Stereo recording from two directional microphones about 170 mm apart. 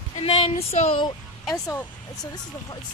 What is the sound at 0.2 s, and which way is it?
Speech, 35° left (ahead or behind).